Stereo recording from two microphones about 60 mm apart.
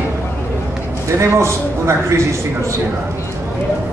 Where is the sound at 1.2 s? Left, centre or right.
Right.